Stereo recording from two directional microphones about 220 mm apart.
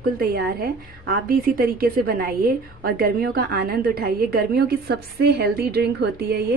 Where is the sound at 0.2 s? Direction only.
45° right (ahead or behind).